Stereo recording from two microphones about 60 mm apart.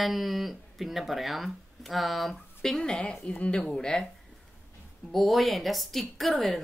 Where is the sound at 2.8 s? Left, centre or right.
Centre.